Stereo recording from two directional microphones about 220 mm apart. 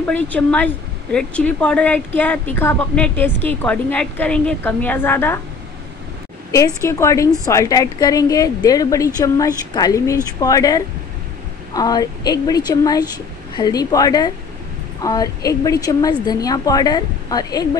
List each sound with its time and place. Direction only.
0.0 s speech: 5° left (ahead or behind)
6.5 s speech: 15° left (ahead or behind)